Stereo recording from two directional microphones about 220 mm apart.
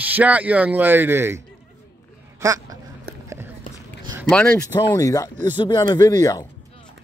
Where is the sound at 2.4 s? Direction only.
15° right (ahead or behind).